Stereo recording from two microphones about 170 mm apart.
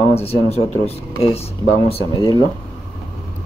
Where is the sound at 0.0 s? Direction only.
35° left (ahead or behind).